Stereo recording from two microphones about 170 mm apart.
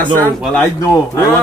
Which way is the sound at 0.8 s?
15° left (ahead or behind).